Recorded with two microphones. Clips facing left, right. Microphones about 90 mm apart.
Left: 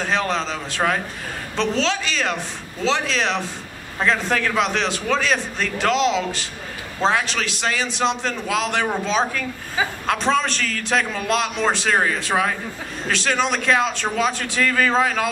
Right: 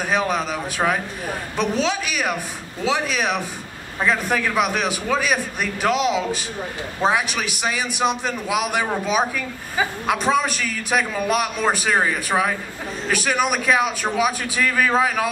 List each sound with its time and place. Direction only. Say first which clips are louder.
0.0 s a man's voice: right 1 dB; 15° right (ahead or behind)